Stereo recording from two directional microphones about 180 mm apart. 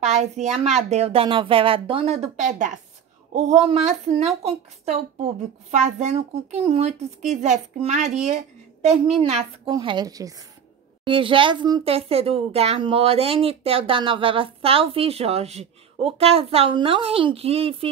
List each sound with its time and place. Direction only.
0.0 s a woman's voice: 40° right (ahead or behind)